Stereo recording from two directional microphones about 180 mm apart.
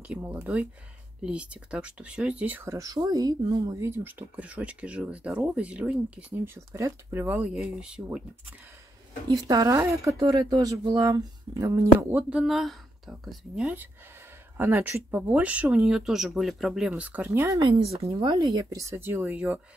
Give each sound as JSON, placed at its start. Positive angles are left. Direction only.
{"t": 0.1, "sound": "speech", "side_deg": -10}
{"t": 9.3, "sound": "speech", "side_deg": -20}
{"t": 17.9, "sound": "speech", "side_deg": -30}